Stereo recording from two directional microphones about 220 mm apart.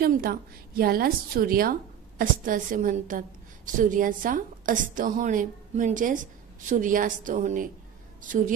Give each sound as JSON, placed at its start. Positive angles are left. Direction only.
{"t": 0.0, "sound": "a woman's voice", "side_deg": -45}